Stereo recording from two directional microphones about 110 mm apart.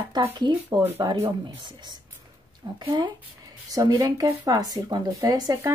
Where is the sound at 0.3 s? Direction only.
45° right (ahead or behind).